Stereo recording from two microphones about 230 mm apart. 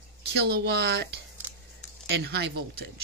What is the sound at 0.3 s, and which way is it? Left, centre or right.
Speech, right.